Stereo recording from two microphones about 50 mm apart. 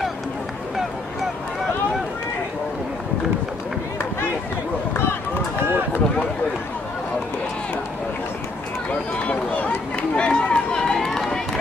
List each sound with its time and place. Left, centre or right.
9.1 s run: left; by 11.4 s centre